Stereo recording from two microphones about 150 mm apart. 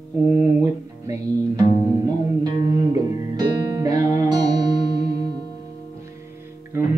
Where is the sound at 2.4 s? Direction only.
25° right (ahead or behind).